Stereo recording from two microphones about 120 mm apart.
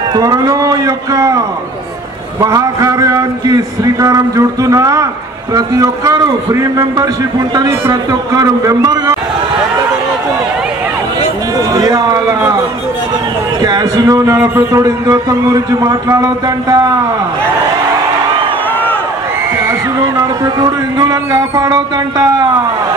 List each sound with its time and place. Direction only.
0.1 s speech: 30° right (ahead or behind)
2.4 s a man's voice: 30° right (ahead or behind)
11.5 s a sound: 30° right (ahead or behind)
13.6 s a man's voice: 35° right (ahead or behind)
20.2 s speech: 30° right (ahead or behind)